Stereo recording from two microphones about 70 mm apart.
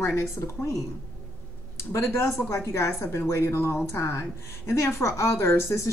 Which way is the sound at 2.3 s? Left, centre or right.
Left.